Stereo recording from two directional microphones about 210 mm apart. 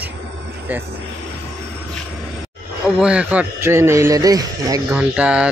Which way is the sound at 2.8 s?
5° right (ahead or behind).